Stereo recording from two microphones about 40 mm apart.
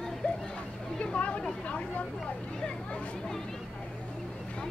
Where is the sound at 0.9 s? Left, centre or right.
Left.